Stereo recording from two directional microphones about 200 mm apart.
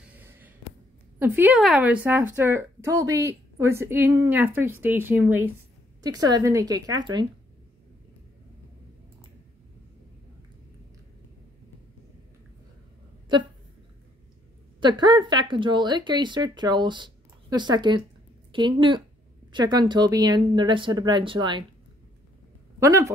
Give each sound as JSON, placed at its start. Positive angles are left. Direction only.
{"t": 0.1, "sound": "a sound", "side_deg": -10}
{"t": 1.2, "sound": "speech", "side_deg": -10}
{"t": 6.0, "sound": "speech", "side_deg": -20}
{"t": 14.8, "sound": "speech", "side_deg": -20}
{"t": 22.8, "sound": "speech", "side_deg": -15}